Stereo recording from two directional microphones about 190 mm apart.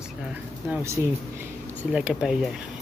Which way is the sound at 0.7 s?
15° right (ahead or behind).